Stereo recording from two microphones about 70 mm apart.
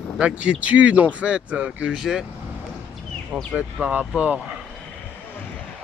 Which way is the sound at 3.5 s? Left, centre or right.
Centre.